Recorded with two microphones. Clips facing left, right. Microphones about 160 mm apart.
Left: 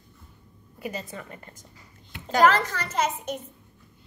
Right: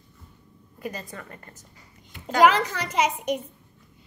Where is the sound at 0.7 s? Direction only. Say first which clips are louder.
Left 1 dB; 15° left (ahead or behind).